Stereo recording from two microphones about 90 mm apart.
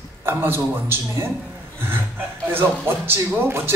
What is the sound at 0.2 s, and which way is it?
Speech, 25° right (ahead or behind).